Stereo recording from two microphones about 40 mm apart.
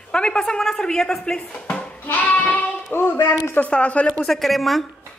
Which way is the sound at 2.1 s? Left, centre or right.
Left.